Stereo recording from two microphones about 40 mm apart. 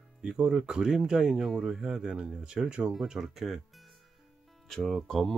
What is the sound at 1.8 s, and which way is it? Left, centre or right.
Speech, right.